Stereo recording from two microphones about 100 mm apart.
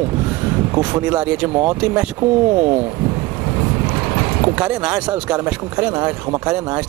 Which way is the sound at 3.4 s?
25° right (ahead or behind).